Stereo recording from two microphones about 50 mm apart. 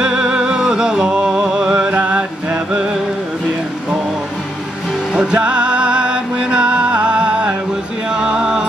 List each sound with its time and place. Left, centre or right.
0.0 s music: centre
5.1 s music: right
8.1 s a sound: centre